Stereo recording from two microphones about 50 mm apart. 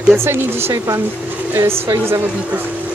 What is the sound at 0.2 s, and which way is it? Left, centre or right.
Speech, right.